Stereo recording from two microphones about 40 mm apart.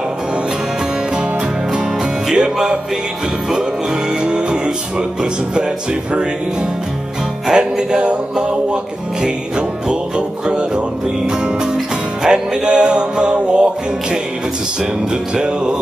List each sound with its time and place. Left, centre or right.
2.3 s music: right
4.2 s music: right
7.5 s music: right
15.3 s music: right